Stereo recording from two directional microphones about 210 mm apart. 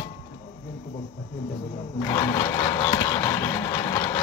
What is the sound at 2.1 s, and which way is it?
Vehicle, 20° left (ahead or behind).